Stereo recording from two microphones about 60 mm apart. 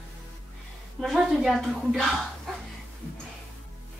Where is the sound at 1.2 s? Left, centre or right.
Centre.